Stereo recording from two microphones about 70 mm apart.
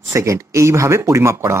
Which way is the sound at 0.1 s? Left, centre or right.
Right.